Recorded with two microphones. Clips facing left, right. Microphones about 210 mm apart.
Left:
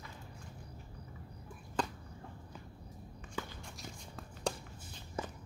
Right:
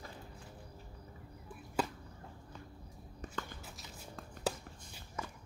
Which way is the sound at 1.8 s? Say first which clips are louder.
Right 1 dB; 5° right (ahead or behind).